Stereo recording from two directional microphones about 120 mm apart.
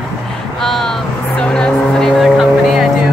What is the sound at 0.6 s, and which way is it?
Speech, 5° left (ahead or behind).